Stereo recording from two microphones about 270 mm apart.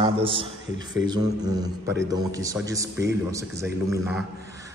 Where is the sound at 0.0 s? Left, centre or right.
Centre.